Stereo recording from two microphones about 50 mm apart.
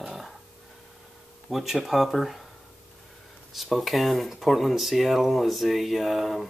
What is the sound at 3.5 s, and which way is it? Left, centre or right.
Speech, centre.